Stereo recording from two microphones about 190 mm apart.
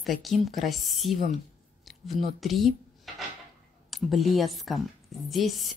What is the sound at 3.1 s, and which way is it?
Dishes, centre (ahead or behind).